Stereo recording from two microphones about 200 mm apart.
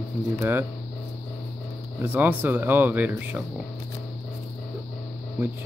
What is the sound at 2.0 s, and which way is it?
Speech, 10° right (ahead or behind).